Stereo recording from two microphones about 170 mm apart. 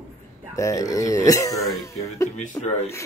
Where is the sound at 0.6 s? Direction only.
20° left (ahead or behind).